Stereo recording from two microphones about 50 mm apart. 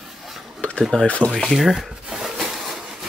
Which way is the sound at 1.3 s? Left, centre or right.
Centre.